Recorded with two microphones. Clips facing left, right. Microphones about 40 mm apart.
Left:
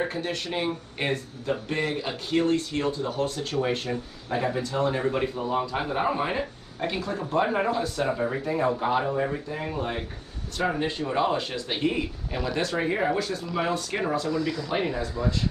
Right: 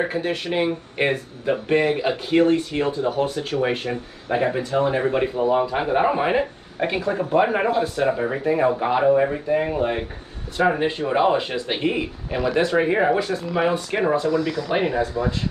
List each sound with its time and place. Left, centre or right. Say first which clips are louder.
0.0 s speech: right 5 dB; right
3.9 s speech: right 5 dB; right